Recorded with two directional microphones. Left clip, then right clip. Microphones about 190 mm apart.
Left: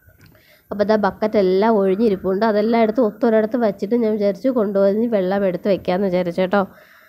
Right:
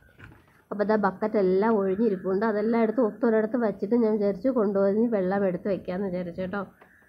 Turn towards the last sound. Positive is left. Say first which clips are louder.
# left 14 dB
turn(degrees=45)  # may be behind; listen again after turning